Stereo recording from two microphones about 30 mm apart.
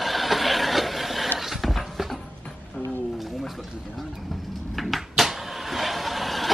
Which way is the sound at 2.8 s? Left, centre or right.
Right.